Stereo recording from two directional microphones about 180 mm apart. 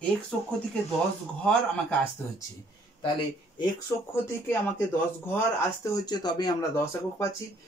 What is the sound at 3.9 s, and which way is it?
Speech, 20° left (ahead or behind).